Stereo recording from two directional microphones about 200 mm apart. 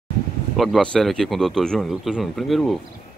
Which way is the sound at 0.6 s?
Centre (ahead or behind).